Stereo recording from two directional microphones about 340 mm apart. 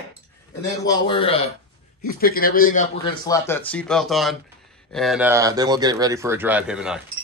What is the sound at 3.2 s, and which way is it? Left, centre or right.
Speech, centre.